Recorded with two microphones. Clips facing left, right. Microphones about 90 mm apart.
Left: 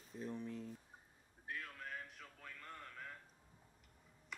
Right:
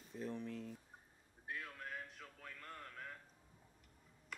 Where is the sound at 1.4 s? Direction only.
5° right (ahead or behind).